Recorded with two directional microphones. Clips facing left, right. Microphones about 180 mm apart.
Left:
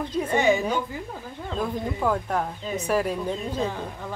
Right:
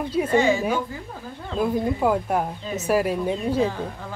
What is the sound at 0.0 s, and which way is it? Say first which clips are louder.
Speech: right 3 dB; 10° right (ahead or behind).